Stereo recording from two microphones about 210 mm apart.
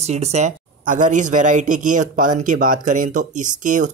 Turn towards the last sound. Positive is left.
turn(degrees=-35)  # may be behind; listen again after turning